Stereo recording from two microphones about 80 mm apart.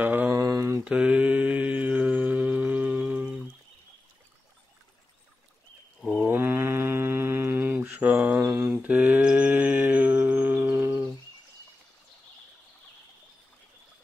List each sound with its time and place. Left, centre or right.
0.0 s a sound: right
0.4 s mantra: right
0.8 s mantra: centre
6.2 s mantra: right
7.8 s mantra: centre
8.4 s mantra: right
8.6 s mantra: centre